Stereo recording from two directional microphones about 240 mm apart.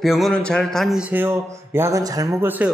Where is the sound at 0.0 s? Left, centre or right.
Centre.